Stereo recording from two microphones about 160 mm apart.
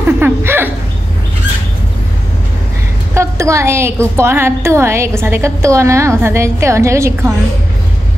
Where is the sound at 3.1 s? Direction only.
20° right (ahead or behind).